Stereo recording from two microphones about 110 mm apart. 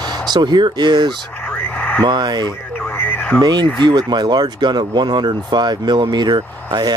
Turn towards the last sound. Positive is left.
turn(degrees=-40)  # may be behind; listen again after turning